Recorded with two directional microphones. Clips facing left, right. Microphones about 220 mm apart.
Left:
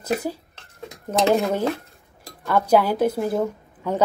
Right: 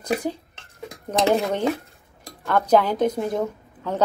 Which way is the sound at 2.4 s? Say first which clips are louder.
Even; 10° left (ahead or behind).